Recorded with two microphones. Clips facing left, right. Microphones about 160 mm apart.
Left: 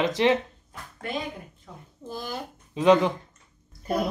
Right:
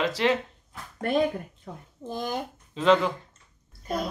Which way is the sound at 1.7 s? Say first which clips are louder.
Right 5 dB; 55° right (ahead or behind).